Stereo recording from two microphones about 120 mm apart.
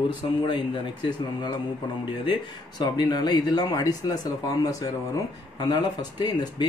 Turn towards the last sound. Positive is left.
turn(degrees=35)  # may be behind; listen again after turning